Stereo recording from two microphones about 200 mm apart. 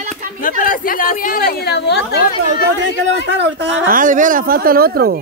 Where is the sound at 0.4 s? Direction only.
45° left (ahead or behind).